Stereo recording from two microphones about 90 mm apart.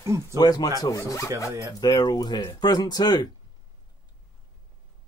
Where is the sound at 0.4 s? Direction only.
50° left (ahead or behind).